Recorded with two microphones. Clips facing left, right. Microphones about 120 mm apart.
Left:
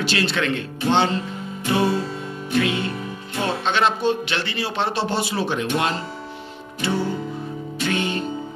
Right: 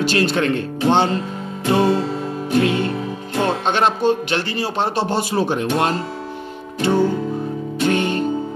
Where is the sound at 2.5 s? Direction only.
40° right (ahead or behind).